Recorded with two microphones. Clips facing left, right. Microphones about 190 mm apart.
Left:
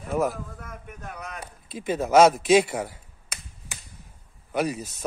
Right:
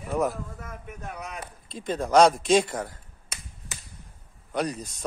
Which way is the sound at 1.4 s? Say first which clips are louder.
Left 2 dB; 5° left (ahead or behind).